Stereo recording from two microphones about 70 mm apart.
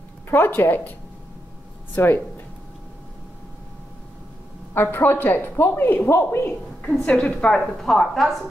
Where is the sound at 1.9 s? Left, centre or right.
Left.